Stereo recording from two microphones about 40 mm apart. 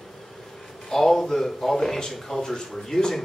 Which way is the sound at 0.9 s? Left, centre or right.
Centre.